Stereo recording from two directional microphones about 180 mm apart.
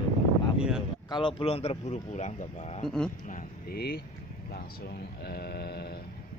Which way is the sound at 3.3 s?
50° left (ahead or behind).